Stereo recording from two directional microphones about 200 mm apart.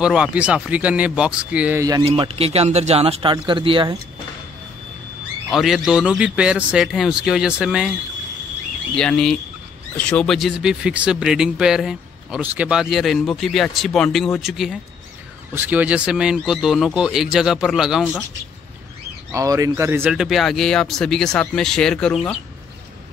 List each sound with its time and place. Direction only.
0.0 s speech: 5° right (ahead or behind); by 4.0 s 25° right (ahead or behind)
5.5 s speech: centre (ahead or behind)
8.9 s speech: 5° left (ahead or behind)
19.3 s speech: 15° right (ahead or behind); by 22.4 s 5° left (ahead or behind)